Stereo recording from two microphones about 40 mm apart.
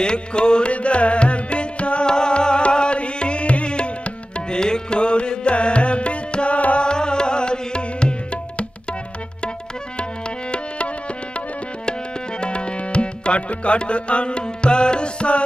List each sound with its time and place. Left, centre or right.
0.0 s music: left
6.9 s music: left
12.4 s tabla: left